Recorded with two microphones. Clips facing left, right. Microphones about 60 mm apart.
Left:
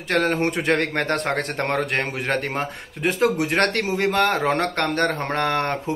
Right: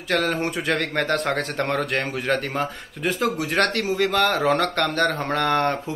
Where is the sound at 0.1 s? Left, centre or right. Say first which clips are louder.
Left 2 dB; left.